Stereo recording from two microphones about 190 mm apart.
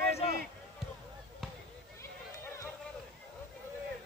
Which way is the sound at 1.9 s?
15° left (ahead or behind).